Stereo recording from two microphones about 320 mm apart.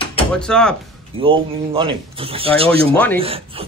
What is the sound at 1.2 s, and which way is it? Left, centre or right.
Speech, centre.